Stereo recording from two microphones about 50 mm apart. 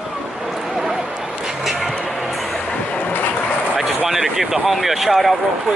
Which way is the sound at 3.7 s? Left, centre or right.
Centre.